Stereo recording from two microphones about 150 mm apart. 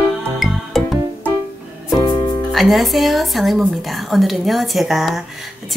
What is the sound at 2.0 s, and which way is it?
Music, 30° left (ahead or behind).